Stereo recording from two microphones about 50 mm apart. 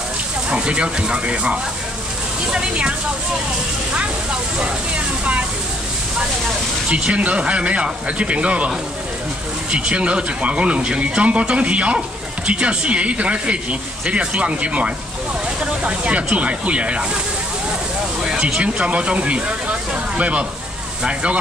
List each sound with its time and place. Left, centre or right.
0.5 s speech: right
3.9 s speech: right
6.9 s speech: right
18.6 s speech: right